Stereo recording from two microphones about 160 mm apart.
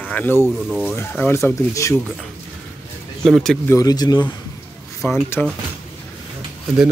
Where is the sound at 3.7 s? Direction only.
25° left (ahead or behind).